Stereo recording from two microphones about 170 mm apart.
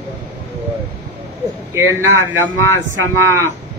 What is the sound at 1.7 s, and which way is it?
Speech, 15° right (ahead or behind).